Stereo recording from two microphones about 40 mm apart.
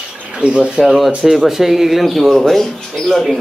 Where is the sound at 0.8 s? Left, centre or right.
Centre.